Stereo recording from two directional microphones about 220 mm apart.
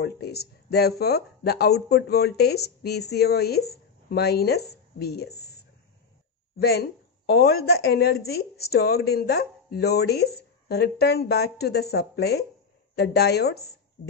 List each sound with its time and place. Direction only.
0.0 s a woman's voice: 45° left (ahead or behind)
6.6 s a woman's voice: 45° left (ahead or behind)